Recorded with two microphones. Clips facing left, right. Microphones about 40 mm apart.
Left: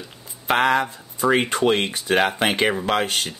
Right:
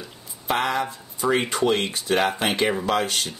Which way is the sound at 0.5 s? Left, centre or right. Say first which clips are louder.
Left 5 dB; left.